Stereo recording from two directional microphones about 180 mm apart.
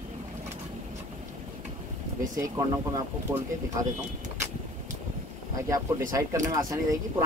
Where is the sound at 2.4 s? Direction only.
20° right (ahead or behind).